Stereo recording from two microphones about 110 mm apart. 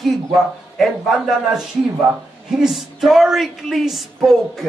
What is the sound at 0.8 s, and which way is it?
Speech, centre (ahead or behind).